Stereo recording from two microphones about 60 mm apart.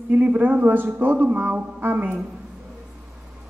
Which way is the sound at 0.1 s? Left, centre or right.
Right.